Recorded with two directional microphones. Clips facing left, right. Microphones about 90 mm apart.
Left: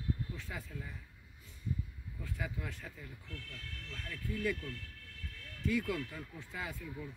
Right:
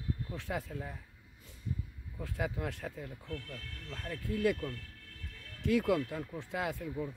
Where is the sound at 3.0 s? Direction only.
50° right (ahead or behind).